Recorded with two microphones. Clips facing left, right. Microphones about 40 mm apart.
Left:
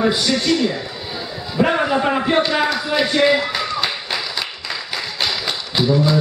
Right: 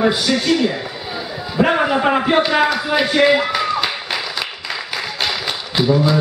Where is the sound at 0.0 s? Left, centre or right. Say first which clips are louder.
Right 1 dB; centre.